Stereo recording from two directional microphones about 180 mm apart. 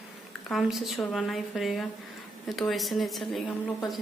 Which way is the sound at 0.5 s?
Centre (ahead or behind).